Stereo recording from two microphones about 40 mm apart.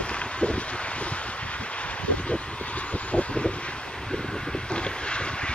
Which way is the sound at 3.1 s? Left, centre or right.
Left.